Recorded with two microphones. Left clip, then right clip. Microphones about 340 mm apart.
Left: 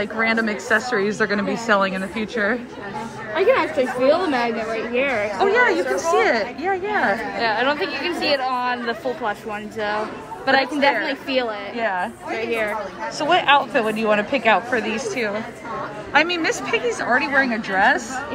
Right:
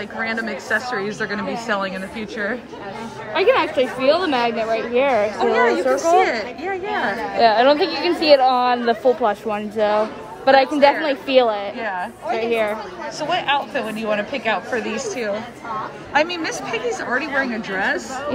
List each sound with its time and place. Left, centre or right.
0.0 s a woman's voice: centre
3.4 s a woman's voice: centre
5.4 s a woman's voice: centre
7.3 s speech: right
11.8 s a woman's voice: centre
12.3 s speech: right
13.2 s a woman's voice: centre
14.9 s speech: right
16.1 s a woman's voice: centre